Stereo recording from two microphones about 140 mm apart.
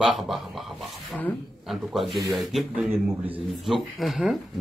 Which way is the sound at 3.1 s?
10° right (ahead or behind).